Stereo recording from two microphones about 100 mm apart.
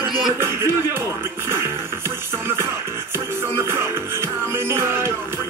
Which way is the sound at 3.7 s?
25° right (ahead or behind).